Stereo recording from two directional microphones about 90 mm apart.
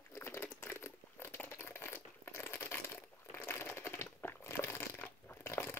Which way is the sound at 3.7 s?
30° left (ahead or behind).